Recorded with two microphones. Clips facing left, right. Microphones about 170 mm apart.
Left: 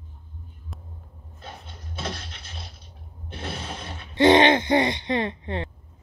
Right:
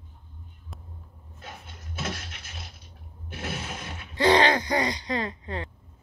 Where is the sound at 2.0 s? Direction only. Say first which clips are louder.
Left 1 dB; 30° left (ahead or behind).